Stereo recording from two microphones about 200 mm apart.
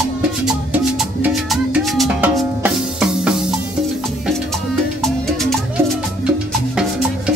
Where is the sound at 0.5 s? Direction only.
Centre (ahead or behind).